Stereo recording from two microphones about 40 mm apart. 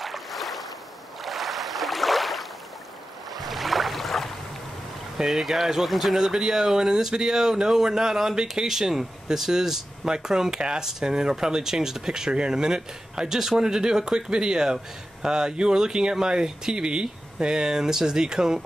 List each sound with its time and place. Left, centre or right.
0.0 s boat: centre
5.1 s speech: centre